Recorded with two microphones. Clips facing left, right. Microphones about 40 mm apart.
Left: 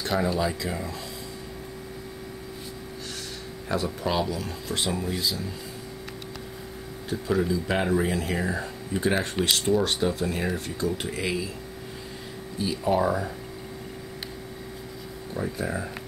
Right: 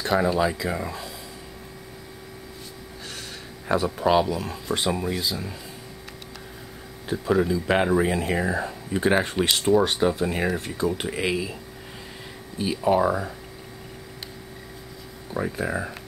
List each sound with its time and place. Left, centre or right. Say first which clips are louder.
0.0 s speech: right 4 dB; centre
3.8 s speech: right 7 dB; centre
7.1 s speech: right 3 dB; centre
12.5 s speech: right 3 dB; centre
15.3 s speech: right 3 dB; right